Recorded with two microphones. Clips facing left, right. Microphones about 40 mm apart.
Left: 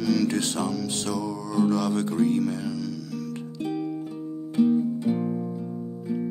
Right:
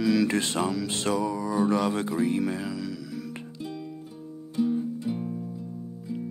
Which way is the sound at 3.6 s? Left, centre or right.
Left.